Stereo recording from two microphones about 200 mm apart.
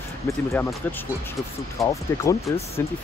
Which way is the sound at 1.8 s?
15° left (ahead or behind).